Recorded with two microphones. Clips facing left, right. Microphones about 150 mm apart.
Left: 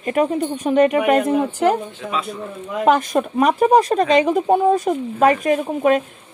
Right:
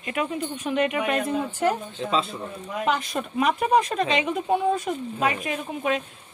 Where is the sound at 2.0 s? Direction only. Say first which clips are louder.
Right 2 dB; 25° right (ahead or behind).